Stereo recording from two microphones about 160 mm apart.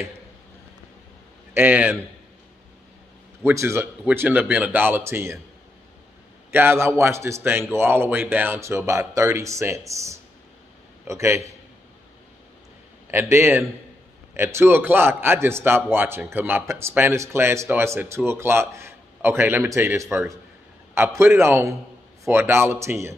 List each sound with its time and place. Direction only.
1.5 s a man's voice: 10° right (ahead or behind)
3.4 s a man's voice: 15° right (ahead or behind)
6.5 s a man's voice: 15° right (ahead or behind)
13.1 s a man's voice: 15° right (ahead or behind)